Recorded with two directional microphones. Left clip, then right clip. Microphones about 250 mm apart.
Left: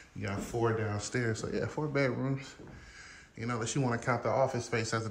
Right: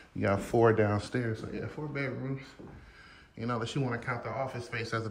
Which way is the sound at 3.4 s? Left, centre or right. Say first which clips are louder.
Right 1 dB; centre.